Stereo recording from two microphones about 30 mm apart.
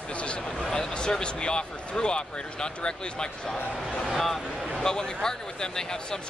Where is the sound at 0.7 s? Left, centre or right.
Left.